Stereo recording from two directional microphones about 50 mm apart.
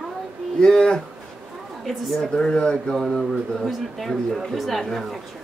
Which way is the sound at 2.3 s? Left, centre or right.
Centre.